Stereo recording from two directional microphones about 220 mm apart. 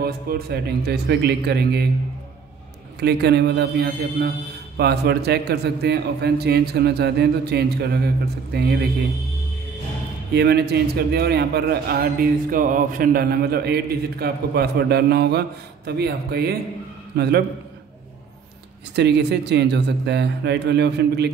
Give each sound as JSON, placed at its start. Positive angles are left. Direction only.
{"t": 0.0, "sound": "a man's voice", "side_deg": -45}
{"t": 3.0, "sound": "a man's voice", "side_deg": -50}
{"t": 10.3, "sound": "a man's voice", "side_deg": -50}
{"t": 18.9, "sound": "a man's voice", "side_deg": -50}